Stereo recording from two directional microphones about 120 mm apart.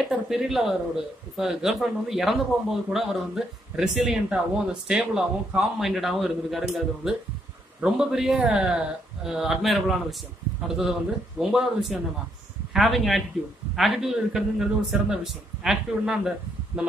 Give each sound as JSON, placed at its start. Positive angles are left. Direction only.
{"t": 0.3, "sound": "a man's voice", "side_deg": -5}